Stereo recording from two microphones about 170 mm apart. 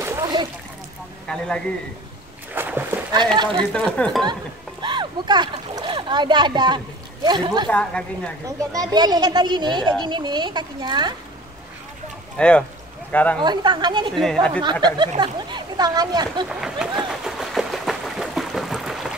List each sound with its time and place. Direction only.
0.0 s splash: 20° right (ahead or behind)
1.3 s speech: 5° left (ahead or behind)
2.5 s a sound: 10° right (ahead or behind)
3.7 s speech: 5° left (ahead or behind)
4.8 s speech: 25° right (ahead or behind)
7.6 s speech: 5° left (ahead or behind)
8.5 s speech: 25° right (ahead or behind)
12.4 s speech: 5° left (ahead or behind)
13.4 s speech: 25° right (ahead or behind)
14.1 s speech: centre (ahead or behind)
14.6 s speech: 25° right (ahead or behind)
16.4 s speech: 5° right (ahead or behind)
17.1 s a sound: centre (ahead or behind)